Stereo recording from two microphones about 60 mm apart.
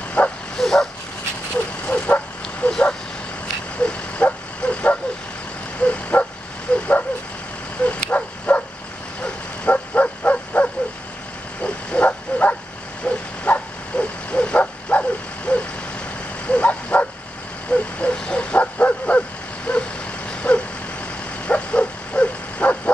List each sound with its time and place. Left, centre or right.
0.2 s bow-wow: left
0.6 s bow-wow: centre
1.9 s bow-wow: left
2.6 s vehicle: centre
3.8 s bow-wow: left
6.7 s a sound: centre
7.8 s bow-wow: left
19.7 s vehicle: centre
21.5 s bow-wow: centre